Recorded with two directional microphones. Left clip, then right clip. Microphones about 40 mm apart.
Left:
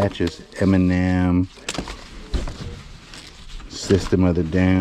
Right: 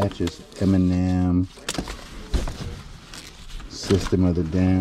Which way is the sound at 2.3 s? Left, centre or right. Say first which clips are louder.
Even; centre.